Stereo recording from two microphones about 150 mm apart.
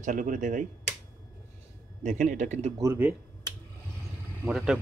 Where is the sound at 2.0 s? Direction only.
55° right (ahead or behind).